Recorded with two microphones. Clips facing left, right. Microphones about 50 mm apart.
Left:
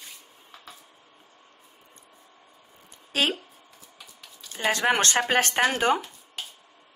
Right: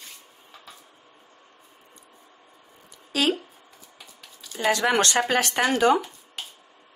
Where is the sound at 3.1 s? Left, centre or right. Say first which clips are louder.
Right 1 dB; left.